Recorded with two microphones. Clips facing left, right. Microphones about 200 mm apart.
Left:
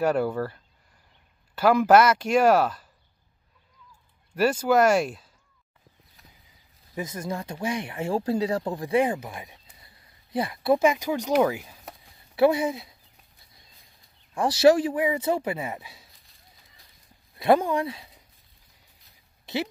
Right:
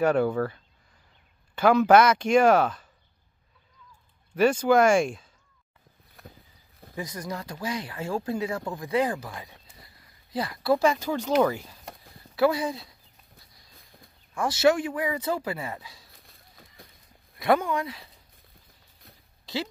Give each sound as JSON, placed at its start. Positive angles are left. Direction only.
{"t": 0.0, "sound": "speech", "side_deg": 5}
{"t": 4.4, "sound": "speech", "side_deg": 5}
{"t": 6.2, "sound": "a sound", "side_deg": -55}
{"t": 7.0, "sound": "speech", "side_deg": 25}
{"t": 12.4, "sound": "speech", "side_deg": 25}
{"t": 14.3, "sound": "speech", "side_deg": 30}
{"t": 16.2, "sound": "a sound", "side_deg": -55}
{"t": 17.4, "sound": "speech", "side_deg": 30}
{"t": 19.4, "sound": "a sound", "side_deg": 20}